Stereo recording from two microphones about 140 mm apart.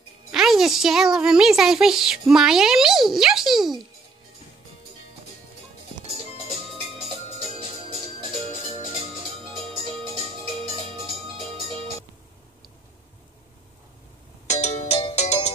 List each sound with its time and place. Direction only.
0.3 s speech: 5° right (ahead or behind)
7.3 s organ: 45° right (ahead or behind)
10.6 s music: 40° right (ahead or behind)
14.5 s music: 50° left (ahead or behind)